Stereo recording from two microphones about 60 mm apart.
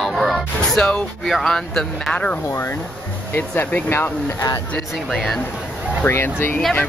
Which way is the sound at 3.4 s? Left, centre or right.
Left.